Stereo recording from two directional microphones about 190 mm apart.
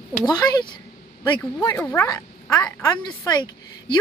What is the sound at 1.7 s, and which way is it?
Speech, 10° left (ahead or behind).